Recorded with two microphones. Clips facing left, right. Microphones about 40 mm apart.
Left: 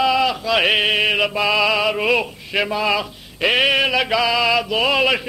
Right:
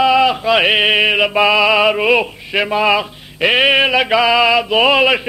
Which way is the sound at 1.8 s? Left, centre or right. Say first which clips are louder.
Right 5 dB; right.